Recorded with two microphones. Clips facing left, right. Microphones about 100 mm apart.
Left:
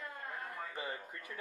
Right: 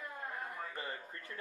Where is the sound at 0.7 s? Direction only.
15° left (ahead or behind).